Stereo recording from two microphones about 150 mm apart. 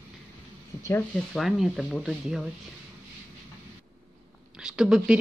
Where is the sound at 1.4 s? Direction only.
Centre (ahead or behind).